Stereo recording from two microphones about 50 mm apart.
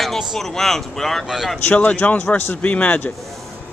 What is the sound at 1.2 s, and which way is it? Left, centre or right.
Speech, centre.